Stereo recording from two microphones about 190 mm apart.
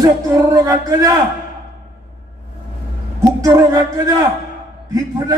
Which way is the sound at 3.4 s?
20° right (ahead or behind).